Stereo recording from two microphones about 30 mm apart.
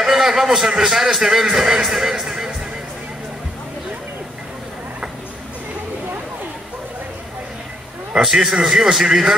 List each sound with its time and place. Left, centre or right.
0.0 s a sound: centre
0.7 s a man's voice: centre
8.2 s a man's voice: centre